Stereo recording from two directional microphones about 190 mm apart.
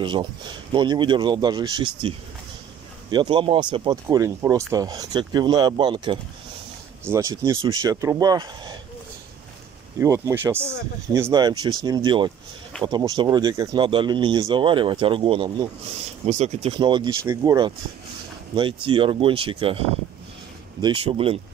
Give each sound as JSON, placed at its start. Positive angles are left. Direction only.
{"t": 0.0, "sound": "speech", "side_deg": -25}
{"t": 9.9, "sound": "speech", "side_deg": -15}
{"t": 20.8, "sound": "speech", "side_deg": -30}